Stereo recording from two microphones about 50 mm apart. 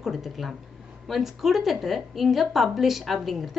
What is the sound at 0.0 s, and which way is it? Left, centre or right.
A woman's voice, centre.